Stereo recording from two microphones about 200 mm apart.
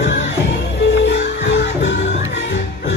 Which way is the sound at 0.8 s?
60° left (ahead or behind).